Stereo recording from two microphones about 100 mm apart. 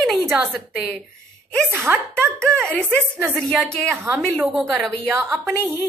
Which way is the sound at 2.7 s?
15° left (ahead or behind).